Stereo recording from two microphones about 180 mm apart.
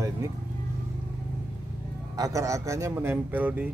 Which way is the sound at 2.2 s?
20° right (ahead or behind).